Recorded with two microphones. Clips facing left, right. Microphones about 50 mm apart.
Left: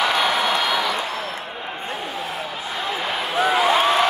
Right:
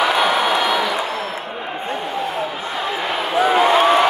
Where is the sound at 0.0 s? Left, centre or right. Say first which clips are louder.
Right 3 dB; centre.